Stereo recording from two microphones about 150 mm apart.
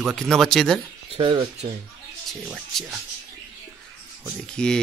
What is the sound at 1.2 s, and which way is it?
Speech, 35° right (ahead or behind).